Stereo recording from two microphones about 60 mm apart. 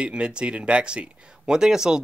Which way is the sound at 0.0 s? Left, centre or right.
Centre.